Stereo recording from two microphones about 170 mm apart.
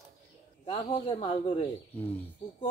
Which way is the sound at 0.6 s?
30° left (ahead or behind).